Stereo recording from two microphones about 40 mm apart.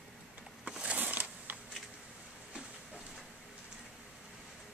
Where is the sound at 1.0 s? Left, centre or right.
Right.